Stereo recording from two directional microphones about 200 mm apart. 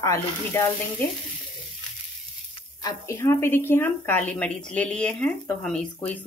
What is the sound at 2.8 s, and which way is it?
A woman's voice, 15° left (ahead or behind).